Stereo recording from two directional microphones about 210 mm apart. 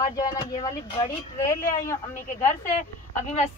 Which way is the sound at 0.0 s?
15° left (ahead or behind).